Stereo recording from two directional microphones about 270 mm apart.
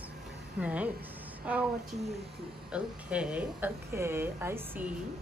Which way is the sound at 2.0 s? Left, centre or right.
Right.